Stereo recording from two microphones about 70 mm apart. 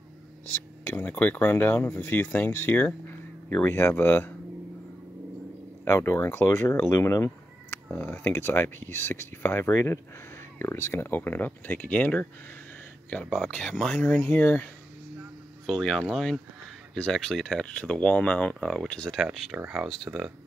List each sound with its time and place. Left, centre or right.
0.8 s speech: left
5.9 s speech: left
7.2 s speech: left
13.2 s speech: centre
15.6 s speech: centre
19.5 s speech: centre